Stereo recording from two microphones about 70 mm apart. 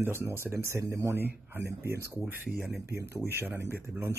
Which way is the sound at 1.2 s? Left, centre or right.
Right.